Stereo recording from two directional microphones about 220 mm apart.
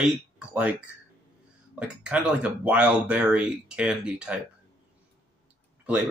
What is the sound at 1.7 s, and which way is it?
Speech, 5° right (ahead or behind).